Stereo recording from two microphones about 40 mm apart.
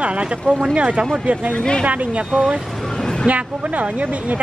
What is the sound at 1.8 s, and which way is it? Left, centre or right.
A woman's voice, right.